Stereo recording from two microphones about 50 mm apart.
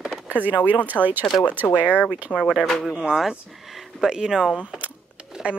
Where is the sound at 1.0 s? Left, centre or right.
Left.